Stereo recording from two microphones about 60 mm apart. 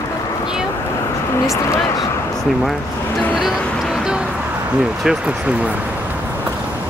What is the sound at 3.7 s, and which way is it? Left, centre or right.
Music, centre.